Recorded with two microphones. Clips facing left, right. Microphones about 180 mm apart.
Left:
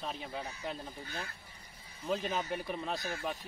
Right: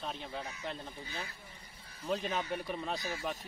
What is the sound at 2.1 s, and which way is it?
Speech, centre (ahead or behind).